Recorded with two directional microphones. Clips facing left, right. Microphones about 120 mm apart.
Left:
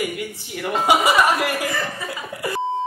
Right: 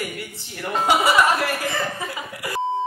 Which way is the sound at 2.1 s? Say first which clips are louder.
Left 3 dB; 25° left (ahead or behind).